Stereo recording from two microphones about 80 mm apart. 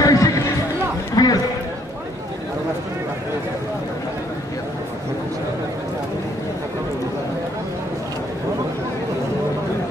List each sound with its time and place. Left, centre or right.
0.0 s music: left
1.1 s chatter: left